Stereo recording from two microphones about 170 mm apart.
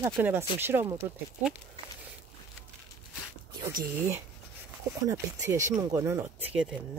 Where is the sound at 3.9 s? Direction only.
15° right (ahead or behind).